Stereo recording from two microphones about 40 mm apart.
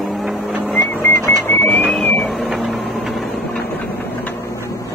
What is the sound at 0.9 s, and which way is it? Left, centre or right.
Music, left.